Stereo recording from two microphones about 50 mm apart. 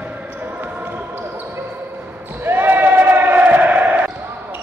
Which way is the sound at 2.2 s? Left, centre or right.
Right.